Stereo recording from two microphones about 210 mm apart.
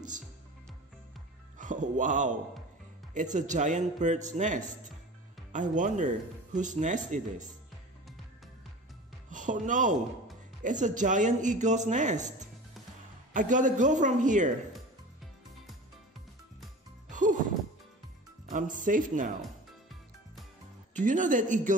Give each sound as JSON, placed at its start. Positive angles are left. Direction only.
{"t": 1.6, "sound": "speech", "side_deg": -35}
{"t": 9.3, "sound": "speech", "side_deg": -35}
{"t": 13.3, "sound": "speech", "side_deg": -35}
{"t": 17.1, "sound": "music", "side_deg": -40}
{"t": 18.5, "sound": "speech", "side_deg": -40}
{"t": 20.9, "sound": "speech", "side_deg": -35}